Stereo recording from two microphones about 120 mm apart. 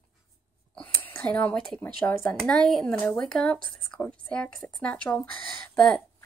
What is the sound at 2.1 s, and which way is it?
Speech, 10° left (ahead or behind).